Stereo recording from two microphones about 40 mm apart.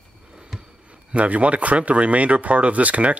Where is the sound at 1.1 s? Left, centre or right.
Right.